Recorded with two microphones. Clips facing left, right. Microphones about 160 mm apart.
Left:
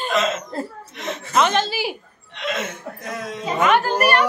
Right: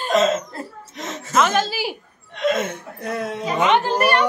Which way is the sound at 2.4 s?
45° right (ahead or behind).